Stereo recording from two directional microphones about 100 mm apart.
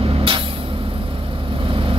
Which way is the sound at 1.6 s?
65° right (ahead or behind).